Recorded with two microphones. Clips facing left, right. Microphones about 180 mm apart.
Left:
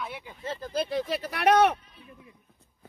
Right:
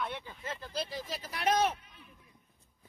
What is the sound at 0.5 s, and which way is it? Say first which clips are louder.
Speech: left 9 dB; 45° left (ahead or behind).